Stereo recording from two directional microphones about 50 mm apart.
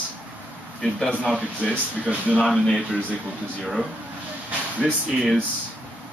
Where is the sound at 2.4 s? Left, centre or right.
Centre.